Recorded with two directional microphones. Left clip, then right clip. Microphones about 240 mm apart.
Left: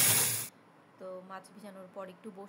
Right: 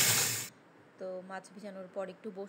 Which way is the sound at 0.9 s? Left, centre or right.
Centre.